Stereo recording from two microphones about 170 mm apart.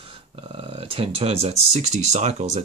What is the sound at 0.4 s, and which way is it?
Speech, 30° right (ahead or behind).